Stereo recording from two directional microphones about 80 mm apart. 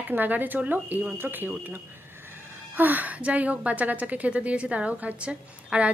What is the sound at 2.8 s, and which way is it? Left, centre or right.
A woman's voice, right.